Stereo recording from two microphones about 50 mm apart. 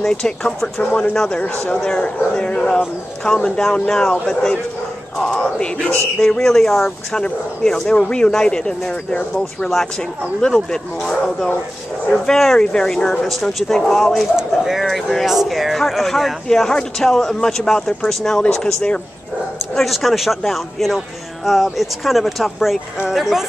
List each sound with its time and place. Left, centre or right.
0.0 s speech: centre
0.7 s speech: left
1.1 s speech: centre
10.4 s speech: centre
12.5 s speech: centre
13.2 s speech: centre
14.3 s speech: centre
19.7 s speech: centre